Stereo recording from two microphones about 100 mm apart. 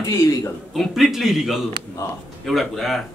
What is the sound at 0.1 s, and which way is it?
Speech, 35° left (ahead or behind).